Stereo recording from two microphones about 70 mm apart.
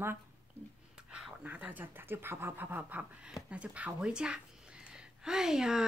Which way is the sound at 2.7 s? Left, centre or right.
Right.